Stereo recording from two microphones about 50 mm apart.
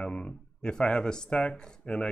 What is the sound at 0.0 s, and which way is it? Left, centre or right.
Speech, left.